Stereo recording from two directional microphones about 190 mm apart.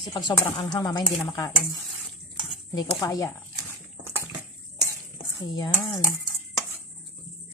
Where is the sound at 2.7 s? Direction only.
20° left (ahead or behind).